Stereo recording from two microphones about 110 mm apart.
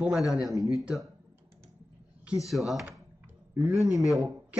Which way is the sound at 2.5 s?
Centre (ahead or behind).